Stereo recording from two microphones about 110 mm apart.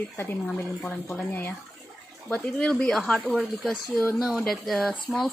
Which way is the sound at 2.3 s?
5° left (ahead or behind).